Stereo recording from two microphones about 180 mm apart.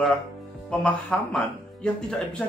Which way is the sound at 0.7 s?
5° left (ahead or behind).